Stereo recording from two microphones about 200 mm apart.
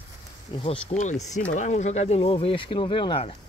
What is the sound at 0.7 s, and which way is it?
Speech, 35° left (ahead or behind).